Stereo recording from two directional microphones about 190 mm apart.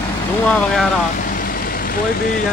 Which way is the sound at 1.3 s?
50° left (ahead or behind).